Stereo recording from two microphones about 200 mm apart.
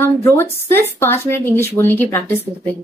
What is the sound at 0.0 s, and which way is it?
A woman's voice, 10° left (ahead or behind).